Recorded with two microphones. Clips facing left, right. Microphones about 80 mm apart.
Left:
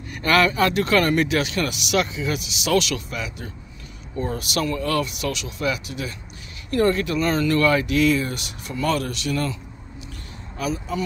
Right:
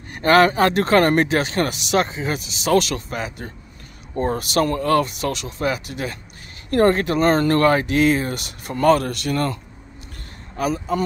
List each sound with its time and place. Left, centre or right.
0.1 s speech: right
10.6 s speech: right